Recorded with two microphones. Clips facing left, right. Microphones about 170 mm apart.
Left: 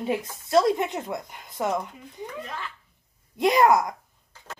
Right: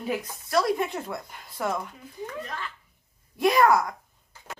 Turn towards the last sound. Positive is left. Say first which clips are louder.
# left 1 dB
turn(degrees=20)  # may be behind; listen again after turning